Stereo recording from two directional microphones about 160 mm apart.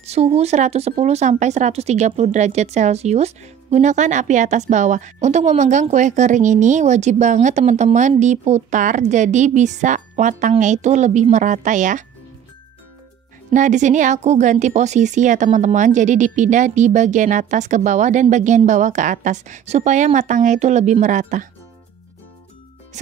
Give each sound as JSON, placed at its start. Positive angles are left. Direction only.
{"t": 0.0, "sound": "speech", "side_deg": -40}
{"t": 13.5, "sound": "speech", "side_deg": -50}